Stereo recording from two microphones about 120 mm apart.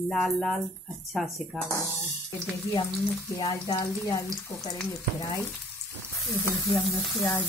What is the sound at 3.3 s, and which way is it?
Speech, 30° left (ahead or behind).